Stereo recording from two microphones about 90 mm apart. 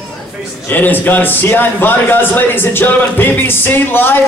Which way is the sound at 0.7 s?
20° left (ahead or behind).